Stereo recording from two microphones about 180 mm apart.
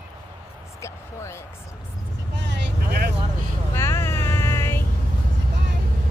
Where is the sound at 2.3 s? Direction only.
80° right.